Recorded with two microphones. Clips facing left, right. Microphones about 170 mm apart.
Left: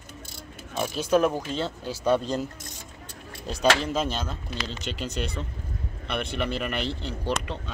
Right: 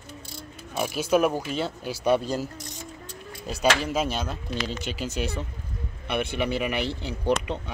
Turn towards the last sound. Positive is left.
turn(degrees=-20)  # may be behind; listen again after turning